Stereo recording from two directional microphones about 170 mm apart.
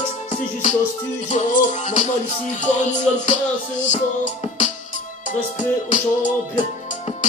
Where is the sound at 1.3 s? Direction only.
45° left (ahead or behind).